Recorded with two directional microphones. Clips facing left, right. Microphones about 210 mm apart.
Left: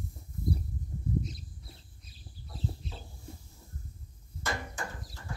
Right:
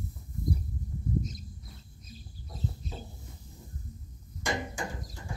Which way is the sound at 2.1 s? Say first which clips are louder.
Right 3 dB; 45° right (ahead or behind).